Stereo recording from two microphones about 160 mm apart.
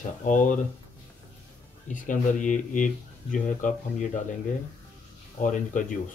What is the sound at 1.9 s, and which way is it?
Speech, 55° left (ahead or behind).